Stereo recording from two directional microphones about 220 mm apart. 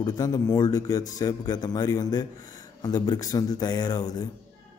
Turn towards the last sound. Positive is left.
turn(degrees=20)  # may be behind; listen again after turning